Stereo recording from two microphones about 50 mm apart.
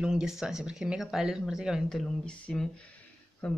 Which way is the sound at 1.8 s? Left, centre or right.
Centre.